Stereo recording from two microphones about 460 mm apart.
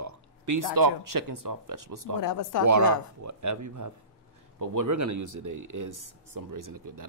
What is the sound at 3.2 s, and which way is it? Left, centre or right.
Speech, right.